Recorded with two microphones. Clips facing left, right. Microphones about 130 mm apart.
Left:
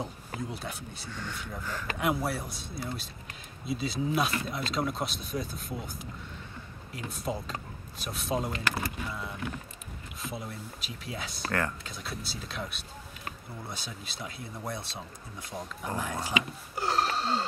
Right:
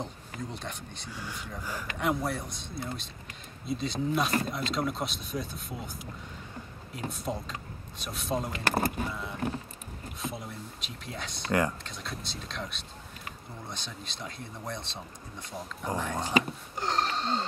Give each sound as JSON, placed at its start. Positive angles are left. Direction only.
{"t": 0.0, "sound": "speech", "side_deg": 5}
{"t": 1.6, "sound": "speech", "side_deg": -10}
{"t": 2.0, "sound": "speech", "side_deg": 5}
{"t": 7.1, "sound": "speech", "side_deg": 0}
{"t": 8.6, "sound": "speech", "side_deg": -45}
{"t": 9.1, "sound": "speech", "side_deg": 0}
{"t": 16.7, "sound": "a sound", "side_deg": 5}